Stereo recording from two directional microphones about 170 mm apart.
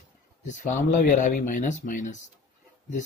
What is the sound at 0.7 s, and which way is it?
Speech, 45° left (ahead or behind).